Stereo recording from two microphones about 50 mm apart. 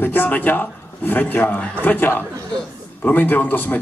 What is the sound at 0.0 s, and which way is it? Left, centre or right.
A man's voice, left.